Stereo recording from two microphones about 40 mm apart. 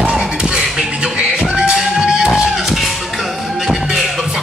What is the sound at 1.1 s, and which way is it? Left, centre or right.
Music, right.